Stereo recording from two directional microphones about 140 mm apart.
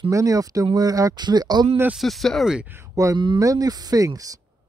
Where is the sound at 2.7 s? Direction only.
20° right (ahead or behind).